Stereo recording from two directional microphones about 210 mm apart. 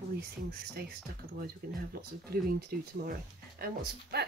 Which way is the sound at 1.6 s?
45° right (ahead or behind).